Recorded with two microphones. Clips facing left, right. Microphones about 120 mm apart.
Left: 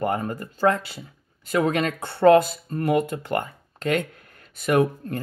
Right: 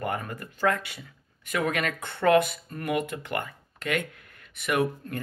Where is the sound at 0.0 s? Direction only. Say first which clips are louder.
Left 6 dB; 30° left (ahead or behind).